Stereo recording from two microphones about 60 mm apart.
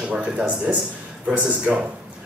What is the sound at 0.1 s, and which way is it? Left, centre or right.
Speech, centre.